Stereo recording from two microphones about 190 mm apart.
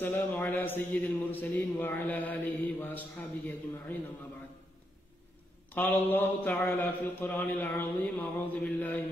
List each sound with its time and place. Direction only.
0.0 s a man's voice: 10° left (ahead or behind)
5.8 s a man's voice: 10° left (ahead or behind)